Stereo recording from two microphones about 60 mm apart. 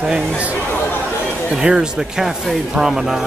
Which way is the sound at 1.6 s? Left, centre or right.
Centre.